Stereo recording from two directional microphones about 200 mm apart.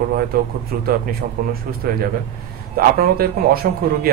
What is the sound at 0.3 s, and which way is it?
A man's voice, 45° right (ahead or behind).